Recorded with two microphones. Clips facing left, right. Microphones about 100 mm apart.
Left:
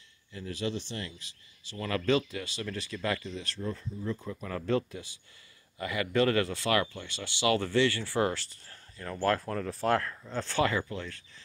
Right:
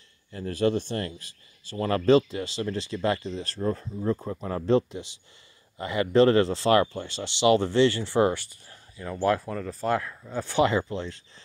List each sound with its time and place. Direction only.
0.3 s speech: 45° right (ahead or behind); by 11.2 s 25° right (ahead or behind)